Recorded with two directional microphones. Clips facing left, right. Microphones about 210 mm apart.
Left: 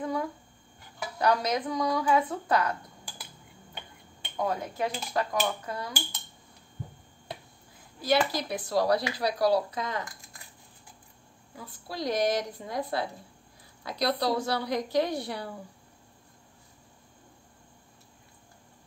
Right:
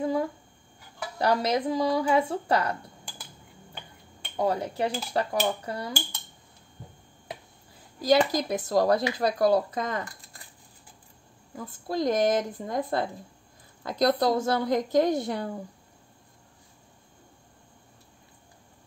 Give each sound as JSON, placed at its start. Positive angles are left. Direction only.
{"t": 0.0, "sound": "a sound", "side_deg": -25}
{"t": 1.1, "sound": "speech", "side_deg": -30}
{"t": 4.4, "sound": "dishes", "side_deg": -30}
{"t": 8.4, "sound": "speech", "side_deg": -45}
{"t": 11.5, "sound": "speech", "side_deg": -50}